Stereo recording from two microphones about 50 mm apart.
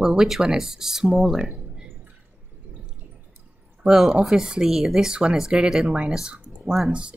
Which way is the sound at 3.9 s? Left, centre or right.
Centre.